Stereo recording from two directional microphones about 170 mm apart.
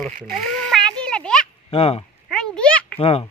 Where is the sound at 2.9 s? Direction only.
35° left (ahead or behind).